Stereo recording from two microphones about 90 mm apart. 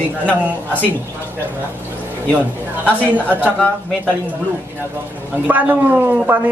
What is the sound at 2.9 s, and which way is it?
Speech, 15° right (ahead or behind).